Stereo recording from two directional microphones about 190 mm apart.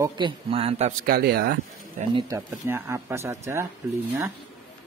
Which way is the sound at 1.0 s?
55° right (ahead or behind).